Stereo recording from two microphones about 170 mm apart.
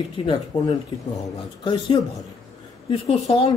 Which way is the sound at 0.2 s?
25° left (ahead or behind).